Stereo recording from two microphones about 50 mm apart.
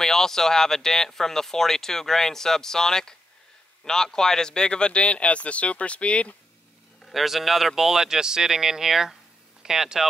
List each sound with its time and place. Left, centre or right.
0.0 s speech: centre; by 6.3 s left
7.1 s speech: centre